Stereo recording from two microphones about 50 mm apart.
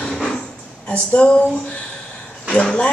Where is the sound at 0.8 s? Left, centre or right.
Left.